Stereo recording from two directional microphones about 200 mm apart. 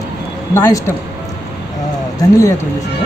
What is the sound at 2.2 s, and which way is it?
Speech, 15° left (ahead or behind).